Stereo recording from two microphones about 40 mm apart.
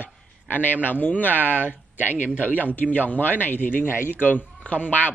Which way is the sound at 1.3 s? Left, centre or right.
Right.